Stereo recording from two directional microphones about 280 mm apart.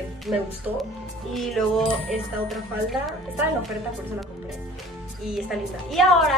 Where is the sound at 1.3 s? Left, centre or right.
Centre.